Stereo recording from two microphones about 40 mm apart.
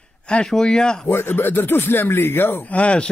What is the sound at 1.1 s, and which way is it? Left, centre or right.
Speech, left.